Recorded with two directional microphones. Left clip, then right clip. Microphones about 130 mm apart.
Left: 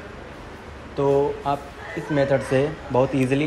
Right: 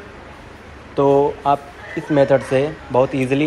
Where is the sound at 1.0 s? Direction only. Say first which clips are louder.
Right 5 dB; centre (ahead or behind).